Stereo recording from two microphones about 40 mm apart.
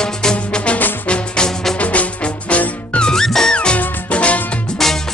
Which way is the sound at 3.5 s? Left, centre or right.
Left.